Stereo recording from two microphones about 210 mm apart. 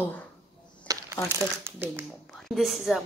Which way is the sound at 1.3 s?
10° right (ahead or behind).